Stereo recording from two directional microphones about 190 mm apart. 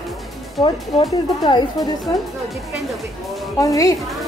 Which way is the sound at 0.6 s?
25° left (ahead or behind).